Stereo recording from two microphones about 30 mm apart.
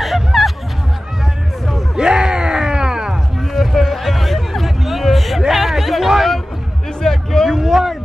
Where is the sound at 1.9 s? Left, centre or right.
Right.